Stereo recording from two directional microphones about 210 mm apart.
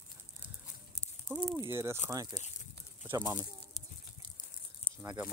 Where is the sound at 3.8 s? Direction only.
30° left (ahead or behind).